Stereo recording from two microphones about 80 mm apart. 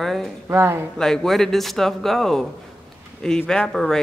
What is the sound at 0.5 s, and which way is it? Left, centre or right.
Speech, right.